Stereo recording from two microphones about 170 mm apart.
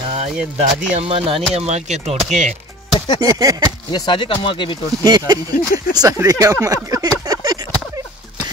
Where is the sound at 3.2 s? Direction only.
20° right (ahead or behind).